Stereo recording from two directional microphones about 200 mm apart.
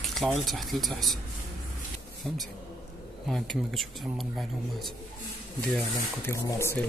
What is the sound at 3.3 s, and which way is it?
Speech, centre (ahead or behind).